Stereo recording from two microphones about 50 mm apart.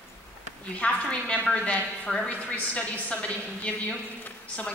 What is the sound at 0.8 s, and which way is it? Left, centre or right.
A woman's voice, left.